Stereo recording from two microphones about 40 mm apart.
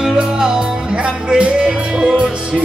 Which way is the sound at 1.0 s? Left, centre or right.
Right.